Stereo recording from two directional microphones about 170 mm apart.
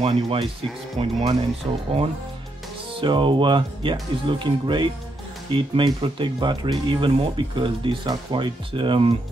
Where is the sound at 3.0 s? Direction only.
30° right (ahead or behind).